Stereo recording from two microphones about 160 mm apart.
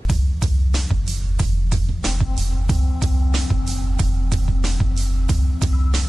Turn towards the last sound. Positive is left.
turn(degrees=0)  # may be behind; listen again after turning